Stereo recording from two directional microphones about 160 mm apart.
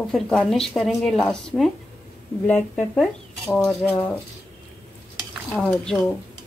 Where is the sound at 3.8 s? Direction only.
15° left (ahead or behind).